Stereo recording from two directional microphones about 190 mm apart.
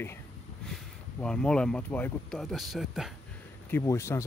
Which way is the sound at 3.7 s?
15° left (ahead or behind).